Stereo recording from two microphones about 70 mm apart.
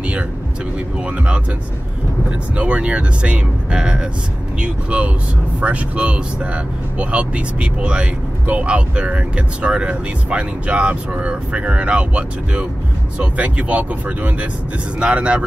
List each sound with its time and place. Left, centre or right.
1.1 s speech: centre
2.5 s speech: centre